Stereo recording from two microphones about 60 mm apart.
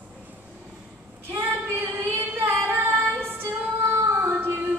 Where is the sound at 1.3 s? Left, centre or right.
Right.